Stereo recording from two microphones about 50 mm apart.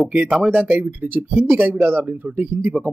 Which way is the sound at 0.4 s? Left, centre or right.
Right.